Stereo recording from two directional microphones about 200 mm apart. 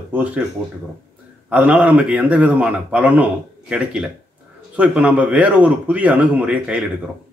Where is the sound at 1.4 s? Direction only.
5° right (ahead or behind).